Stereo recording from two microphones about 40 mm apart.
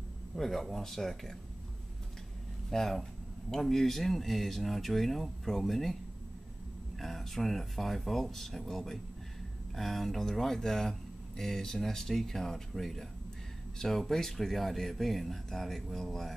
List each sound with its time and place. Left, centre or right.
0.4 s speech: centre
2.7 s speech: centre
7.0 s speech: centre